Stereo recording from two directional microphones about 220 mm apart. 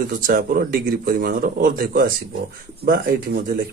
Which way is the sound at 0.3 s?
40° right (ahead or behind).